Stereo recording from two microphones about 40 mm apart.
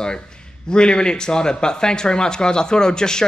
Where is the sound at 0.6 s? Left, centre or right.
Left.